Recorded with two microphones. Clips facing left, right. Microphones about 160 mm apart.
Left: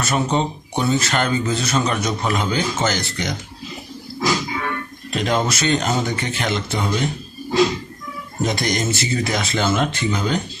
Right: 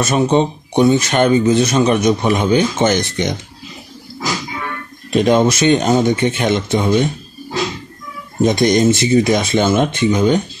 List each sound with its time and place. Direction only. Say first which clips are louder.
0.0 s speech: right 6 dB; 20° right (ahead or behind)
5.1 s speech: right 8 dB; 20° right (ahead or behind)
8.4 s speech: right 9 dB; 20° right (ahead or behind)